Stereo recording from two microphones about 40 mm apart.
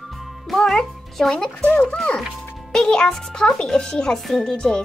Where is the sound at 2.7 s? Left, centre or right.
Left.